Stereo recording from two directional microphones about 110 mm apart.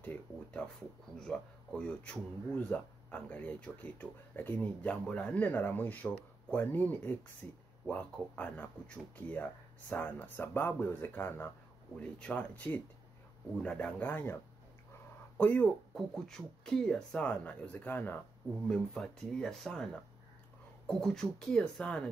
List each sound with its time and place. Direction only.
0.0 s speech: 15° left (ahead or behind)
15.3 s speech: 15° left (ahead or behind)
15.9 s speech: 5° left (ahead or behind)
18.7 s speech: 5° left (ahead or behind)